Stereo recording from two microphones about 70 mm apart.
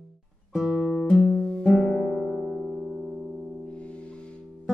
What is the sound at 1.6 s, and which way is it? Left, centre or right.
Music, centre.